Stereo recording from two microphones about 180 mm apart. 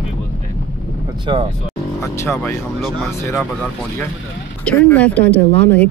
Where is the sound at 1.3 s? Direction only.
30° right (ahead or behind).